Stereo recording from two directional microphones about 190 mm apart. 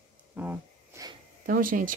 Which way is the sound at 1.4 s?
45° right (ahead or behind).